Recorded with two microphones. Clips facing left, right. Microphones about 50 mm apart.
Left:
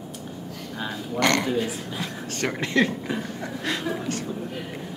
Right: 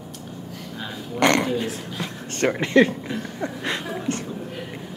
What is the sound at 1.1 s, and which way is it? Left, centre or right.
Speech, centre.